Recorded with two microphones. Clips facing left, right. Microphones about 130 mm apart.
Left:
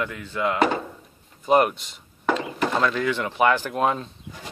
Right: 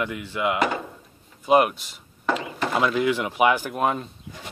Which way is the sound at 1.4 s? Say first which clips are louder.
Even; 5° right (ahead or behind).